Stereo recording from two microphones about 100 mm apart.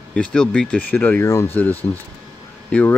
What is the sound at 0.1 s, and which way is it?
Speech, 10° left (ahead or behind).